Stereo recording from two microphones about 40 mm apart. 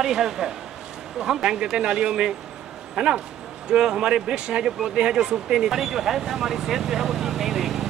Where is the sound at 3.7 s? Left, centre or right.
Centre.